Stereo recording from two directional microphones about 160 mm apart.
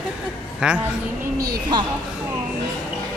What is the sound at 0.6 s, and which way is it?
Speech, 5° right (ahead or behind).